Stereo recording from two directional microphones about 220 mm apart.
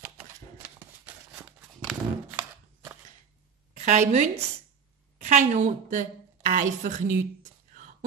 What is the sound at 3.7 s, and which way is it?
A woman's voice, 30° right (ahead or behind).